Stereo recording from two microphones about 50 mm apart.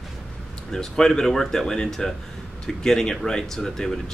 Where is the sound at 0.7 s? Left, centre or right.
Centre.